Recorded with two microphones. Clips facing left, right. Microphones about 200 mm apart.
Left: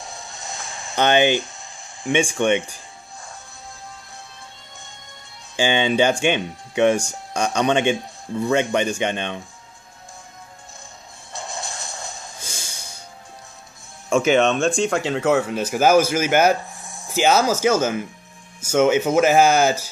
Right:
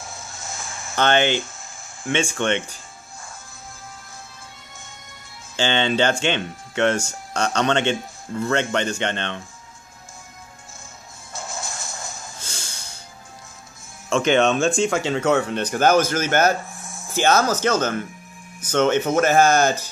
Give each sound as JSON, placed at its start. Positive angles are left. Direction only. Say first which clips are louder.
{"t": 0.0, "sound": "a sound", "louder": "left 1 dB", "side_deg": 0}
{"t": 0.7, "sound": "speech", "louder": "left 2 dB", "side_deg": 15}
{"t": 5.6, "sound": "speech", "louder": "left 2 dB", "side_deg": 10}
{"t": 11.3, "sound": "music", "louder": "left 1 dB", "side_deg": 0}
{"t": 14.0, "sound": "speech", "louder": "left 1 dB", "side_deg": 5}